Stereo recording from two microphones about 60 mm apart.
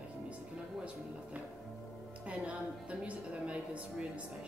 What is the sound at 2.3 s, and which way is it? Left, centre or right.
A woman's voice, right.